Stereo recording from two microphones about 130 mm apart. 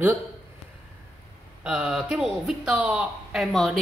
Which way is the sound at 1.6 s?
10° right (ahead or behind).